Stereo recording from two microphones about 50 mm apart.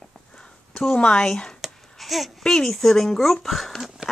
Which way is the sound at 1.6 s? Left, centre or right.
Centre.